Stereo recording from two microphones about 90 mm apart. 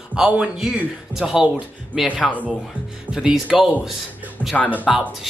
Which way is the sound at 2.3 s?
15° left (ahead or behind).